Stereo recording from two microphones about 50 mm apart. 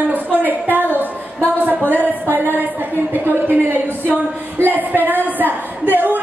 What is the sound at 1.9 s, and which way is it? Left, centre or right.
Speech, right.